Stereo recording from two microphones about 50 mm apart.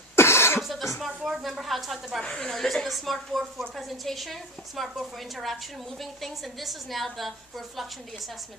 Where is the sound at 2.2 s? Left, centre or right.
Centre.